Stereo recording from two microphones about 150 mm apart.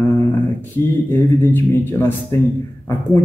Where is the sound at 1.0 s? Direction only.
15° left (ahead or behind).